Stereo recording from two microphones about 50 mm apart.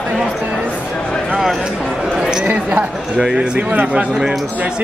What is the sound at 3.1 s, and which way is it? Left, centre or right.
Speech, centre.